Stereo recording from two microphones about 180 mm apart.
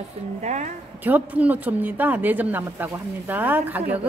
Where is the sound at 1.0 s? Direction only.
10° right (ahead or behind).